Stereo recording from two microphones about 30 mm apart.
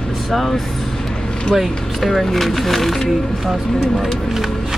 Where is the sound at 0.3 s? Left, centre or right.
Centre.